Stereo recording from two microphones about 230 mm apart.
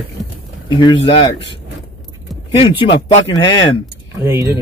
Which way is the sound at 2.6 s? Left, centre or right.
Left.